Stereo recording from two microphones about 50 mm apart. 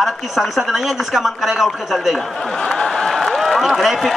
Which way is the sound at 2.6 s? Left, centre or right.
Centre.